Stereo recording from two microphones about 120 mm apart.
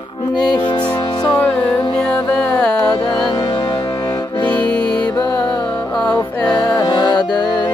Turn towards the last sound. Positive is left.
turn(degrees=35)  # may be behind; listen again after turning